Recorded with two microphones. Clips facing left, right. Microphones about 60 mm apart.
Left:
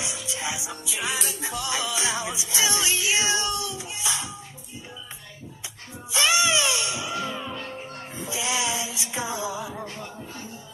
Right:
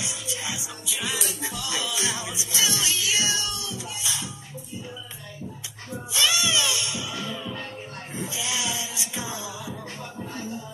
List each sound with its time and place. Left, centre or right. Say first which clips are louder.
0.0 s music: left 2 dB; left
6.1 s music: left 3 dB; left